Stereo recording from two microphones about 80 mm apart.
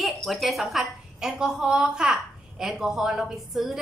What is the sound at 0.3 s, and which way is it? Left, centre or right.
A woman's voice, centre.